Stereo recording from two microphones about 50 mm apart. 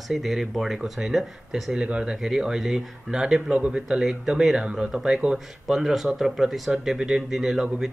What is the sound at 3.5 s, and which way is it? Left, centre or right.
Speech, right.